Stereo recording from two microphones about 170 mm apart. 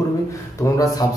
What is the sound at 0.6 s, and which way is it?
Speech, 20° left (ahead or behind).